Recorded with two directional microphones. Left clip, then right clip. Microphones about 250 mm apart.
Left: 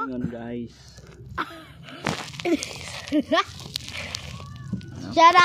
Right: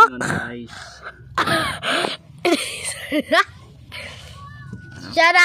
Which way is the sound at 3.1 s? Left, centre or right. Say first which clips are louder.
Right 5 dB; right.